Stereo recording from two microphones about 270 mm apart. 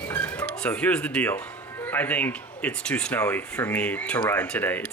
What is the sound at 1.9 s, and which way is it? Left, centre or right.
Speech, centre.